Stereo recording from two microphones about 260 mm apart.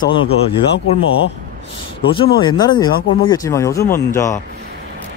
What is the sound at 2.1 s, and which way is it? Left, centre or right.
Speech, centre.